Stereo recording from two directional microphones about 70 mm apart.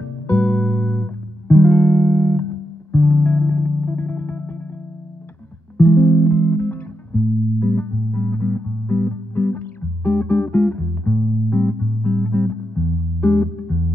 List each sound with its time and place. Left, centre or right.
0.3 s music: left
5.8 s music: left